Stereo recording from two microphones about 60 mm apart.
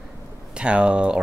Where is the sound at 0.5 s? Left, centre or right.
Centre.